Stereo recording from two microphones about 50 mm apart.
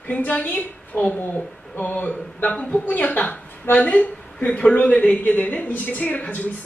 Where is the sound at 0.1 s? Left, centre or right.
Left.